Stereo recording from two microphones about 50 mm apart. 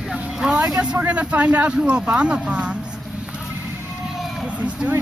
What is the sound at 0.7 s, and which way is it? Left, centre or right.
Speech, centre.